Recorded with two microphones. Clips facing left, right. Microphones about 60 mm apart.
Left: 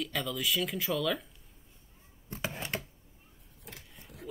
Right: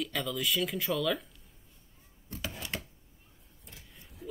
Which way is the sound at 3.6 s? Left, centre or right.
Left.